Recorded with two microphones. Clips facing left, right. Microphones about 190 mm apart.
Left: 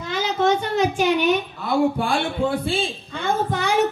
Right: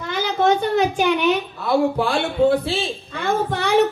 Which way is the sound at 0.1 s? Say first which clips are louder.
Right 2 dB; 60° right (ahead or behind).